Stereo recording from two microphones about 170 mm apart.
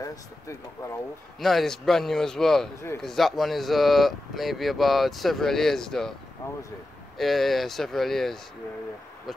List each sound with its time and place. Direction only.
0.0 s speech: 20° left (ahead or behind)
1.4 s speech: centre (ahead or behind)
7.2 s speech: centre (ahead or behind)